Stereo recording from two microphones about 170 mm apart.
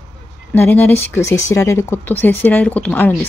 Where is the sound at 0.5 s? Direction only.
10° left (ahead or behind).